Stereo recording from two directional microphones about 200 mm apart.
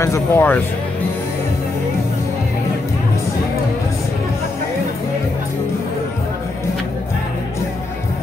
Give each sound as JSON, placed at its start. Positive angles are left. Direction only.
{"t": 0.0, "sound": "speech", "side_deg": 15}